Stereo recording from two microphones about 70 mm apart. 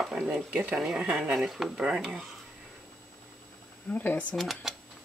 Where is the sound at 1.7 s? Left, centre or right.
Centre.